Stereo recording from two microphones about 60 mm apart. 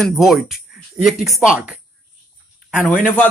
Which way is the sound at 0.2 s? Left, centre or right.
Centre.